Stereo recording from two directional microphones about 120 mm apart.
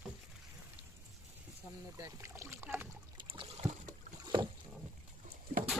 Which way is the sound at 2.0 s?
25° right (ahead or behind).